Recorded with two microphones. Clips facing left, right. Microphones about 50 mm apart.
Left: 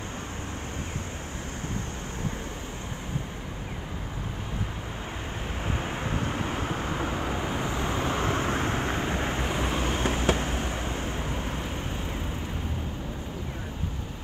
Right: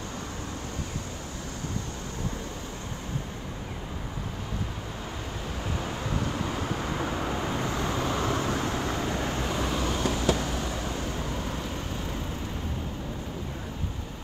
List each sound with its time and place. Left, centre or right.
5.8 s vehicle: left